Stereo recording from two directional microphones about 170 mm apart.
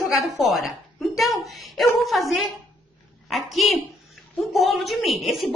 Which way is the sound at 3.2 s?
Centre (ahead or behind).